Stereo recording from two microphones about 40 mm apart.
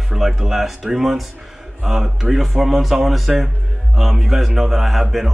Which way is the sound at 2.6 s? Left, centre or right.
Centre.